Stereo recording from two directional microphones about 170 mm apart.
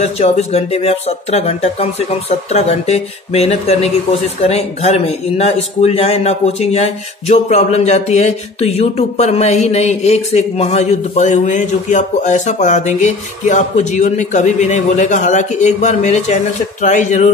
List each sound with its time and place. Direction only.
0.0 s a man's voice: 40° left (ahead or behind)